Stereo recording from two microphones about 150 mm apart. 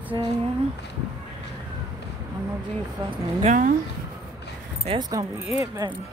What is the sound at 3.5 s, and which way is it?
Speech, 60° right (ahead or behind).